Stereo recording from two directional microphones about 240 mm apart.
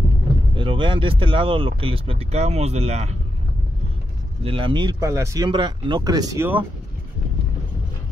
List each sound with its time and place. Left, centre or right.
0.6 s speech: right
4.4 s speech: right